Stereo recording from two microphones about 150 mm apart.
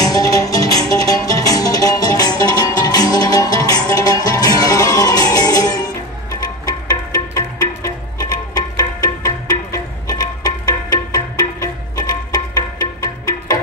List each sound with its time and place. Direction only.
0.0 s music: 25° left (ahead or behind)